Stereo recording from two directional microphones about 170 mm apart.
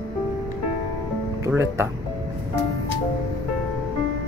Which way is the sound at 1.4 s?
15° right (ahead or behind).